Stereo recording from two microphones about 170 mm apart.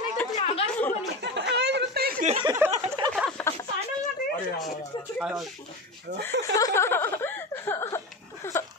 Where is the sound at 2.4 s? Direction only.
15° right (ahead or behind).